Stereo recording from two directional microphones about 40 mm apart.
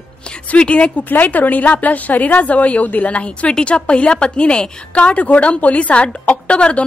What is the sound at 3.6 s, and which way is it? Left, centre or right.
A woman's voice, left.